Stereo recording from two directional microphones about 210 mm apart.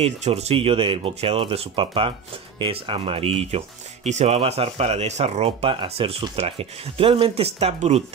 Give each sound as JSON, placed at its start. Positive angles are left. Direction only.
{"t": 0.0, "sound": "speech", "side_deg": -30}